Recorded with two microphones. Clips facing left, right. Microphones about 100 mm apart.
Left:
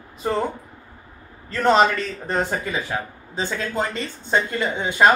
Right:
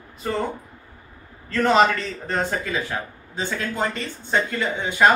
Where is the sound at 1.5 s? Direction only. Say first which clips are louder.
Left 1 dB; centre (ahead or behind).